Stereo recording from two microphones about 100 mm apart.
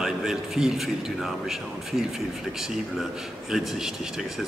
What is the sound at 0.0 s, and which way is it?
A man's voice, 5° right (ahead or behind).